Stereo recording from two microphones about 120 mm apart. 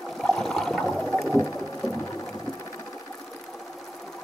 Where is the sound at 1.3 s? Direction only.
25° left (ahead or behind).